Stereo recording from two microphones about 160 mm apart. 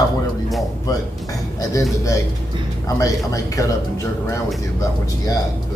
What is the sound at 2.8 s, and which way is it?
Speech, 20° left (ahead or behind).